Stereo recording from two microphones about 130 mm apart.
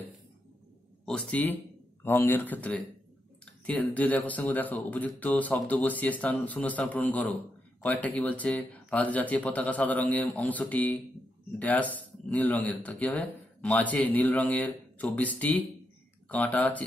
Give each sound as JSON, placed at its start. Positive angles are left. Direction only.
{"t": 1.0, "sound": "speech", "side_deg": 10}